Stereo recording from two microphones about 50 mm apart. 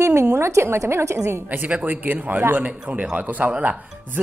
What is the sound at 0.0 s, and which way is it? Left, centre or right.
A woman's voice, right.